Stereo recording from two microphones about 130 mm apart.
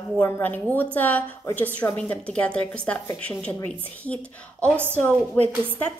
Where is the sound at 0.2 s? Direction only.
15° left (ahead or behind).